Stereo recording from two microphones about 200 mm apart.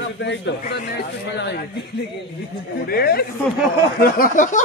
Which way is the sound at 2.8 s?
50° left (ahead or behind).